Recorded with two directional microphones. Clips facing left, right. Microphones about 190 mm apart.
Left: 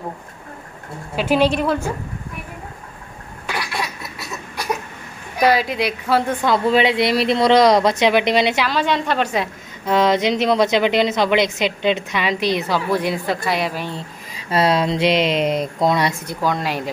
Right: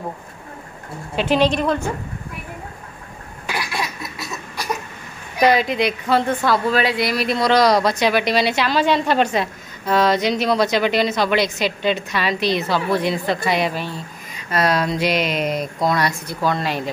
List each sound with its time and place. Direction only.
1.1 s speech: 10° left (ahead or behind)
5.4 s speech: 5° left (ahead or behind)
6.4 s a woman's voice: 20° left (ahead or behind)
8.6 s speech: 5° right (ahead or behind)
9.3 s a woman's voice: 15° left (ahead or behind)
13.7 s a woman's voice: 20° left (ahead or behind)
16.3 s speech: 10° left (ahead or behind)